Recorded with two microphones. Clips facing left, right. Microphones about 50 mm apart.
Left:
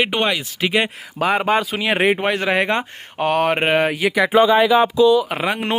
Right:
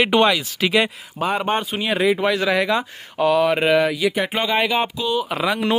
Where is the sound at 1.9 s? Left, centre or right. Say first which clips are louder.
Left 1 dB; left.